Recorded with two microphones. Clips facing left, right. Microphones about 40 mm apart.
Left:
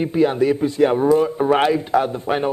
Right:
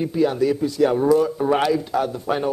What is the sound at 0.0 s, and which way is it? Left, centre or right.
A man's voice, left.